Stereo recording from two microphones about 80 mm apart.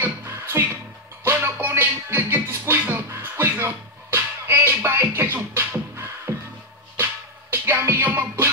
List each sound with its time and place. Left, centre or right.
0.2 s music: right
7.5 s music: right